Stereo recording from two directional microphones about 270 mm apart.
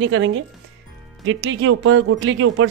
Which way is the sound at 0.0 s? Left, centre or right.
Right.